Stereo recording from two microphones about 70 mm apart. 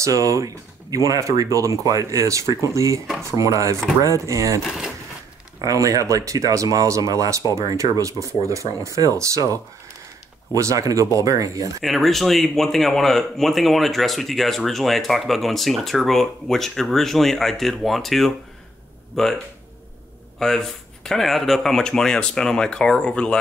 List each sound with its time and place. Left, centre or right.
0.0 s speech: right
4.6 s speech: centre
5.6 s speech: right
11.8 s speech: centre